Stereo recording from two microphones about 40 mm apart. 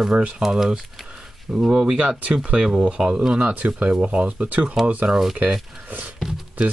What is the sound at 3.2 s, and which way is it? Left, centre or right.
Speech, centre.